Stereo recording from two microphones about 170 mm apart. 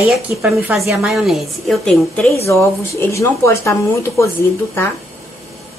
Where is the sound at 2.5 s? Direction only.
15° left (ahead or behind).